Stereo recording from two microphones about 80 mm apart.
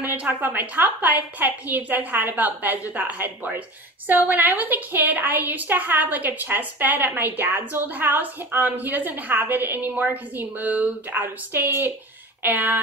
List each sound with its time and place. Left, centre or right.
0.1 s a woman's voice: right